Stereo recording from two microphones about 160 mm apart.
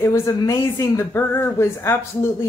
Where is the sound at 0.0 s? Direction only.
15° left (ahead or behind).